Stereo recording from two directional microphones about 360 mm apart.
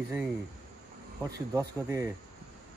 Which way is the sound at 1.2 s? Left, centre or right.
Centre.